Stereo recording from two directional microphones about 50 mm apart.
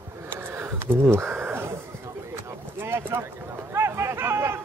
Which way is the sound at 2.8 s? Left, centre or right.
Right.